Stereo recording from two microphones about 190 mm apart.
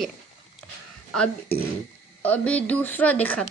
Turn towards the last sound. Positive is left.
turn(degrees=10)  # may be behind; listen again after turning